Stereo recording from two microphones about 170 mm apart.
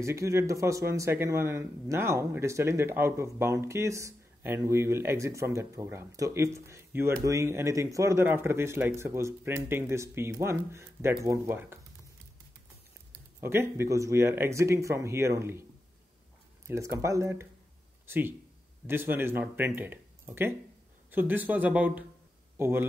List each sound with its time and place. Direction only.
0.0 s speech: 15° right (ahead or behind)
13.4 s speech: 15° right (ahead or behind)
16.6 s speech: 15° right (ahead or behind)